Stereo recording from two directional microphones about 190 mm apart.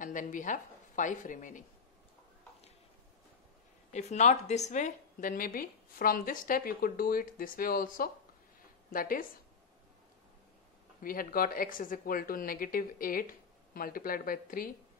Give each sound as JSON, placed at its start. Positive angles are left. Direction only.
{"t": 0.0, "sound": "a woman's voice", "side_deg": 45}
{"t": 3.9, "sound": "a woman's voice", "side_deg": 35}
{"t": 11.0, "sound": "a woman's voice", "side_deg": 50}